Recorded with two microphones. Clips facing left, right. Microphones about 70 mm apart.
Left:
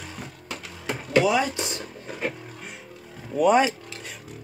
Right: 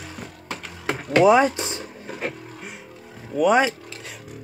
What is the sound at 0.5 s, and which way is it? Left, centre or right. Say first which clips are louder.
Music: right 4 dB; right.